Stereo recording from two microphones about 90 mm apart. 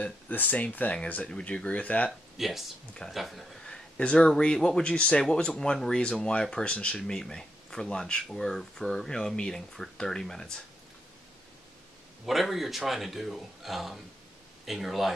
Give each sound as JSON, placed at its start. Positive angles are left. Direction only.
{"t": 0.0, "sound": "speech", "side_deg": 20}
{"t": 2.0, "sound": "speech", "side_deg": 0}
{"t": 12.3, "sound": "speech", "side_deg": 0}